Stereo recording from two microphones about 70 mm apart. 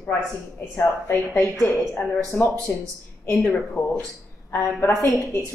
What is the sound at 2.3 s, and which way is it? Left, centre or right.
Speech, left.